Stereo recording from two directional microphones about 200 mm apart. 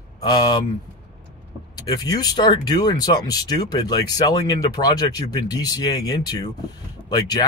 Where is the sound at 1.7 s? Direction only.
20° left (ahead or behind).